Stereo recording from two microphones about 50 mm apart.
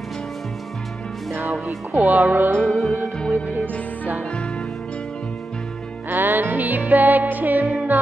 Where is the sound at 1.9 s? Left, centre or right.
Right.